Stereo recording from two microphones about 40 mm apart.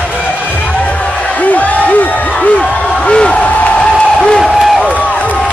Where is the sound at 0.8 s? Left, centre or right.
Left.